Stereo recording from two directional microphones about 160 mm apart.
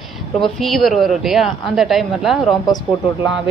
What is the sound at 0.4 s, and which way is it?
A man's voice, centre (ahead or behind).